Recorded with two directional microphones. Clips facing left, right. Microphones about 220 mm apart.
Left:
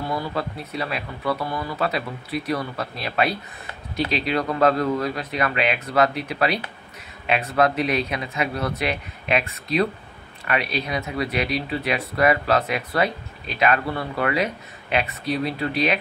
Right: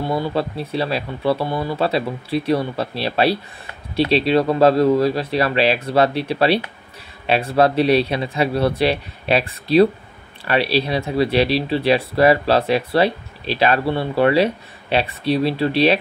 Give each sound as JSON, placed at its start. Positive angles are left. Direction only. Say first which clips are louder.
{"t": 0.0, "sound": "speech", "louder": "right 6 dB", "side_deg": -25}